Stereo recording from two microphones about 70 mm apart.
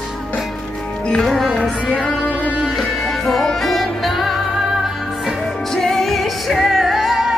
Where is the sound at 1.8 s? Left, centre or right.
Centre.